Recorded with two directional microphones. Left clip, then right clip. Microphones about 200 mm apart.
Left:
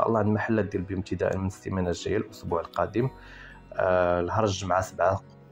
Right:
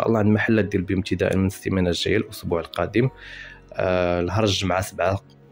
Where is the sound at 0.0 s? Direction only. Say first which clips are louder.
Right 4 dB; 30° right (ahead or behind).